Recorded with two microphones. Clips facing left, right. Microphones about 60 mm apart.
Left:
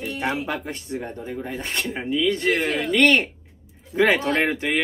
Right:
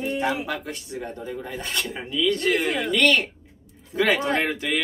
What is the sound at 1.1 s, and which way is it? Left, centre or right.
Speech, left.